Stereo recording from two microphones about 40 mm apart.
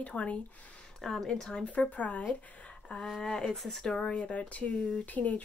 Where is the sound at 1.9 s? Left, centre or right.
Left.